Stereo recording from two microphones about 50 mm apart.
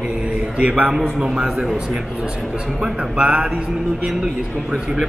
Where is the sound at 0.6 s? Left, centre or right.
Right.